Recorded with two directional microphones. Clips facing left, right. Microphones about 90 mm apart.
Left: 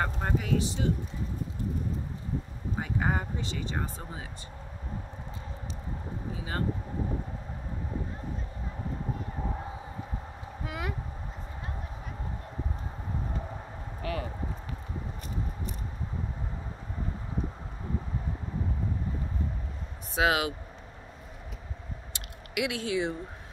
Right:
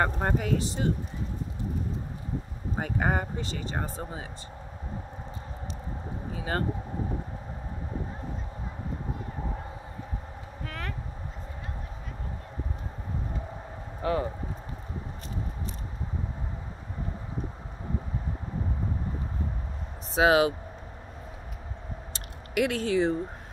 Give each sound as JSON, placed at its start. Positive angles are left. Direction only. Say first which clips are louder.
{"t": 0.0, "sound": "speech", "louder": "right 4 dB", "side_deg": -45}
{"t": 2.8, "sound": "speech", "louder": "right 3 dB", "side_deg": -50}
{"t": 6.3, "sound": "a sound", "louder": "right 6 dB", "side_deg": -55}
{"t": 10.6, "sound": "speech", "louder": "left 2 dB", "side_deg": 10}
{"t": 14.0, "sound": "speech", "louder": "right 7 dB", "side_deg": -30}
{"t": 20.2, "sound": "speech", "louder": "right 5 dB", "side_deg": -30}
{"t": 22.1, "sound": "a sound", "louder": "right 5 dB", "side_deg": -45}